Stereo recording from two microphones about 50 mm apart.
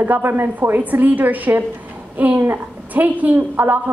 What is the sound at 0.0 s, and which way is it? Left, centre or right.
A woman's voice, right.